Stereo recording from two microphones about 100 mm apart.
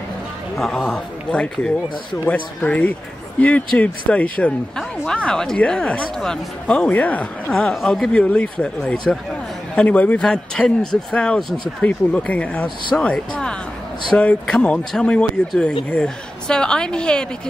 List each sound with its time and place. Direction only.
0.6 s speech: 5° left (ahead or behind)